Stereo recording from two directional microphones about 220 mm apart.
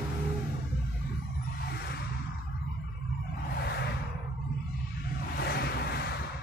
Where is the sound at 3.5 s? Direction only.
50° left (ahead or behind).